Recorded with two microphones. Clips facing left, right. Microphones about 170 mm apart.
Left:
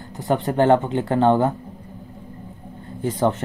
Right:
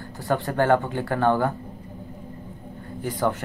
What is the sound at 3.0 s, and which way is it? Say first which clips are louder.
Speech: left 4 dB; 20° left (ahead or behind).